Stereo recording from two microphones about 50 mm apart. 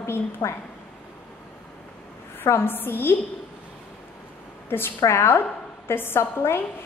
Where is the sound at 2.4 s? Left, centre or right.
Left.